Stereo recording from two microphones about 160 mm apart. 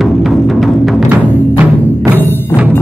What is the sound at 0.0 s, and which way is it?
Music, centre (ahead or behind).